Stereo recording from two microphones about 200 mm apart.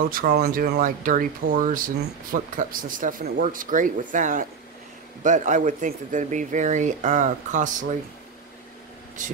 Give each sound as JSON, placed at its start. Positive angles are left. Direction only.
{"t": 0.0, "sound": "speech", "side_deg": -45}
{"t": 9.2, "sound": "speech", "side_deg": -40}